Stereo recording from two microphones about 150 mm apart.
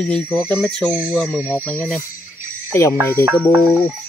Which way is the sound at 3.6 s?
5° left (ahead or behind).